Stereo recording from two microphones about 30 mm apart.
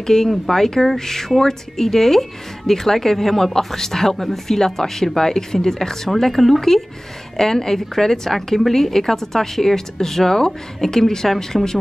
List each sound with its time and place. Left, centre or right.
0.0 s speech: centre
7.3 s speech: centre